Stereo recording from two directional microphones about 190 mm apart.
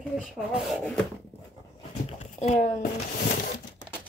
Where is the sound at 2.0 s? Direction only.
35° left (ahead or behind).